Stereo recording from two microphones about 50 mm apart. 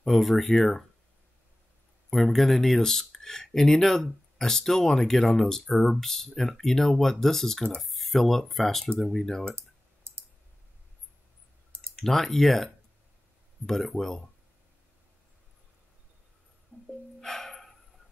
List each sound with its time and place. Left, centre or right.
0.0 s speech: centre
2.0 s speech: centre
10.1 s clicking: right
12.0 s speech: centre
16.7 s music: left
17.2 s a sound: centre